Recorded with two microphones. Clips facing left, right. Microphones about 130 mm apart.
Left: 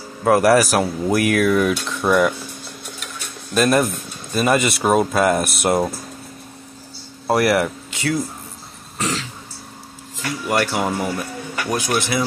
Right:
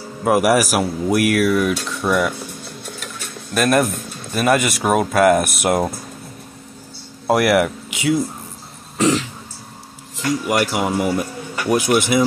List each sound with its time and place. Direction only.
0.2 s speech: 10° right (ahead or behind)
3.5 s speech: centre (ahead or behind)
7.2 s speech: 10° right (ahead or behind)
10.2 s speech: 15° right (ahead or behind)
11.5 s speech: 25° right (ahead or behind)